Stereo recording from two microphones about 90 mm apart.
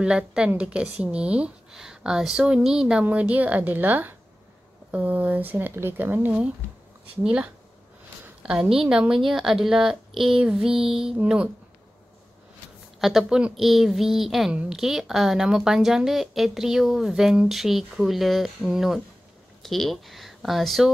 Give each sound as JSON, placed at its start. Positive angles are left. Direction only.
{"t": 0.0, "sound": "speech", "side_deg": -10}
{"t": 13.3, "sound": "speech", "side_deg": -5}